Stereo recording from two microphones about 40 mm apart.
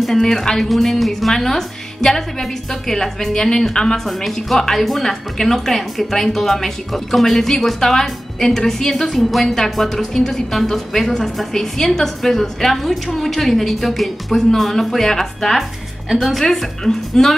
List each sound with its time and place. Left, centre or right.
0.0 s a woman's voice: centre